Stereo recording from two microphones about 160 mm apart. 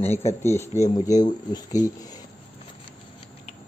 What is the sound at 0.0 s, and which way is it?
Speech, 40° left (ahead or behind).